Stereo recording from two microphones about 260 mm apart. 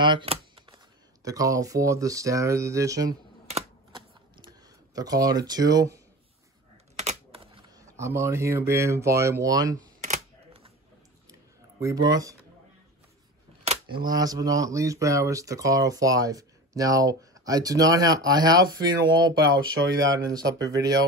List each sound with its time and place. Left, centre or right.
0.0 s computer keyboard: centre
1.2 s speech: centre
3.1 s computer keyboard: right
4.5 s speech: centre
7.0 s speech: right
10.0 s camera: right
12.1 s speech: centre
13.7 s speech: centre